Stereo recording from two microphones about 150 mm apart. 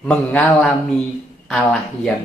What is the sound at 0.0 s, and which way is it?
A woman's voice, 10° left (ahead or behind).